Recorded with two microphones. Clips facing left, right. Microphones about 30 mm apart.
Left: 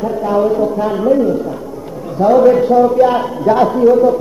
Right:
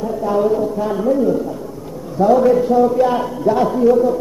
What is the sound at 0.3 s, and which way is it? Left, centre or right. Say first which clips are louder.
A man's voice: left 3 dB; centre.